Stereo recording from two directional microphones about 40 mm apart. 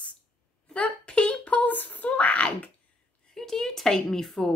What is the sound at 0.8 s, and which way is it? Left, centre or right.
Speech, left.